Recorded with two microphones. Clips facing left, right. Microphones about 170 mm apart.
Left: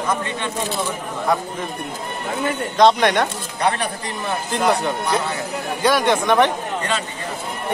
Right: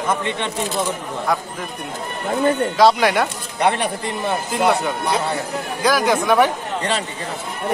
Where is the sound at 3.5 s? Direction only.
25° right (ahead or behind).